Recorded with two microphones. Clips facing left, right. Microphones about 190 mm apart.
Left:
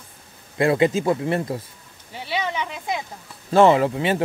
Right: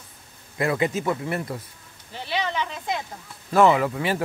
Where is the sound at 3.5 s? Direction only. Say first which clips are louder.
Left 3 dB; 25° left (ahead or behind).